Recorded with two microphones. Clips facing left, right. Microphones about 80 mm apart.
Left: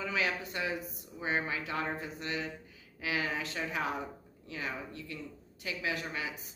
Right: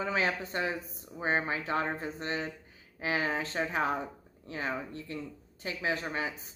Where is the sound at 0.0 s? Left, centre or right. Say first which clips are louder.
Right 3 dB; right.